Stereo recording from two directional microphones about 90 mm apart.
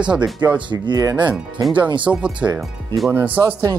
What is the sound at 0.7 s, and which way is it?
Speech, 45° right (ahead or behind).